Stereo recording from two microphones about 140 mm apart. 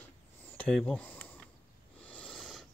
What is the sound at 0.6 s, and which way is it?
Speech, 5° left (ahead or behind).